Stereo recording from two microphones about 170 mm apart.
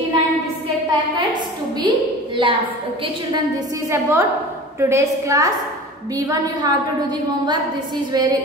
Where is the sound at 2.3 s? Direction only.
30° right (ahead or behind).